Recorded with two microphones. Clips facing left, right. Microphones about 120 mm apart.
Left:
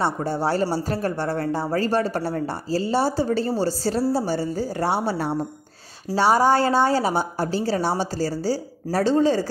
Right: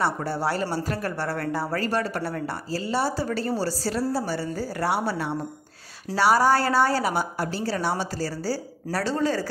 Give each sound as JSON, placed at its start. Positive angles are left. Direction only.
{"t": 0.0, "sound": "a woman's voice", "side_deg": 20}